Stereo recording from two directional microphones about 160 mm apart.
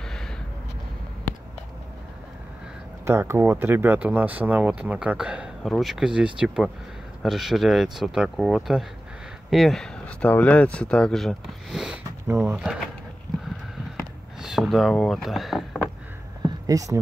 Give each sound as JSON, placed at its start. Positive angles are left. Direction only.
{"t": 3.1, "sound": "speech", "side_deg": -15}
{"t": 14.4, "sound": "speech", "side_deg": 0}
{"t": 16.4, "sound": "a sound", "side_deg": -20}